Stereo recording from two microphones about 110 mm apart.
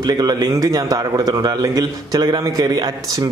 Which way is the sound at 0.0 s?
40° right (ahead or behind).